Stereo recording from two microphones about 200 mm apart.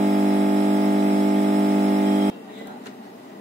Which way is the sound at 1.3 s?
35° right (ahead or behind).